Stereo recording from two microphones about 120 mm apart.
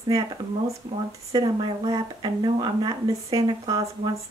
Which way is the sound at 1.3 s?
35° right (ahead or behind).